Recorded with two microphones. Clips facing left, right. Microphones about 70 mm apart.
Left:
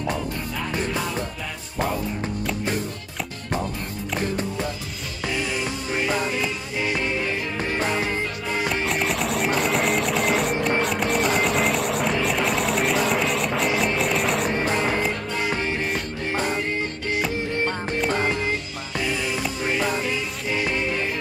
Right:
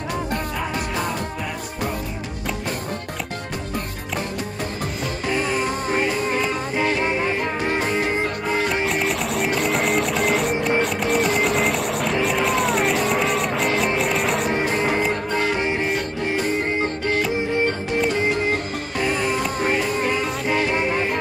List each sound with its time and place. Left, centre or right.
5.3 s music: right
6.8 s music: right
8.8 s music: centre
18.5 s music: right